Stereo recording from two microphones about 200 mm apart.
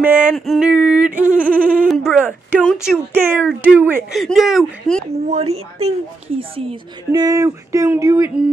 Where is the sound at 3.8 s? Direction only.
10° right (ahead or behind).